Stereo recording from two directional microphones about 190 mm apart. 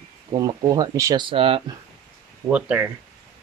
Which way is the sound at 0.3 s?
20° right (ahead or behind).